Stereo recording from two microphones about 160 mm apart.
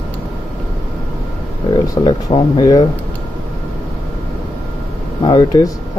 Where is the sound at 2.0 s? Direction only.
25° left (ahead or behind).